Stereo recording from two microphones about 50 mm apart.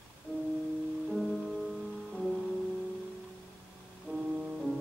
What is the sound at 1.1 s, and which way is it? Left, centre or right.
Music, centre.